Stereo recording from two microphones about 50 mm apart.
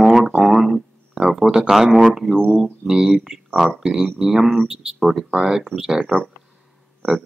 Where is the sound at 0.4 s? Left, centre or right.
Centre.